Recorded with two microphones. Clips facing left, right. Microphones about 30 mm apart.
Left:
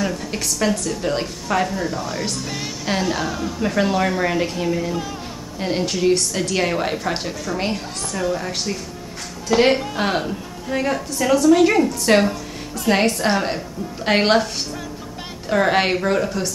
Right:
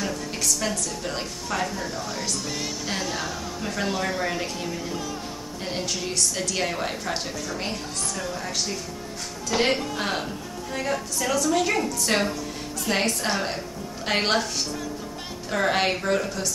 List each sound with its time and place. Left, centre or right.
0.8 s a woman's voice: left
15.5 s a woman's voice: centre